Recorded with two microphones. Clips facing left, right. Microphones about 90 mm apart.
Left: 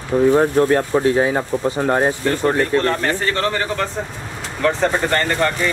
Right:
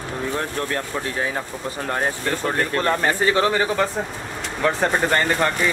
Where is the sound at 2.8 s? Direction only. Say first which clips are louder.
Even; 10° right (ahead or behind).